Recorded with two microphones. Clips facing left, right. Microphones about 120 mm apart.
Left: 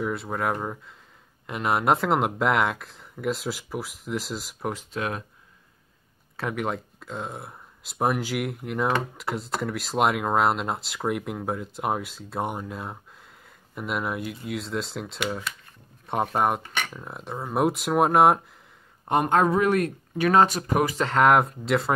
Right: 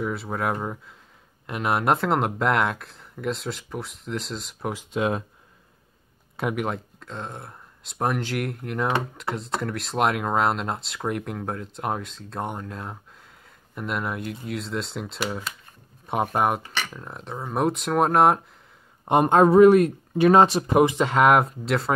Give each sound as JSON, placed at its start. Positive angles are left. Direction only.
{"t": 0.0, "sound": "speech", "side_deg": 0}
{"t": 4.9, "sound": "speech", "side_deg": -20}
{"t": 6.5, "sound": "speech", "side_deg": 0}
{"t": 19.0, "sound": "speech", "side_deg": -25}
{"t": 21.0, "sound": "speech", "side_deg": -5}